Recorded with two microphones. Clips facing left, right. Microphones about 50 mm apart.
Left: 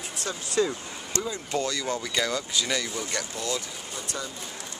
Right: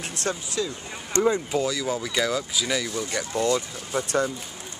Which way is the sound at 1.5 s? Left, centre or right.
Centre.